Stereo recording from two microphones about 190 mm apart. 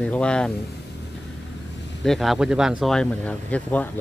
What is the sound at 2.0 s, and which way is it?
Speech, centre (ahead or behind).